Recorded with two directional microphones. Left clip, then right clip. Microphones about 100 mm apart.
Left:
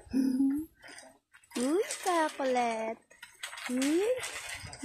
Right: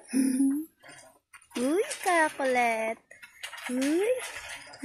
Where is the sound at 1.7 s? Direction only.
Centre (ahead or behind).